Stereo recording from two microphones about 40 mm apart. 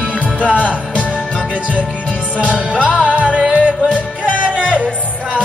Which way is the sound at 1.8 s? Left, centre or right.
Left.